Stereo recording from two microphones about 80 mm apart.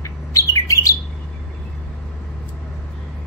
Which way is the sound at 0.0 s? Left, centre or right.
Left.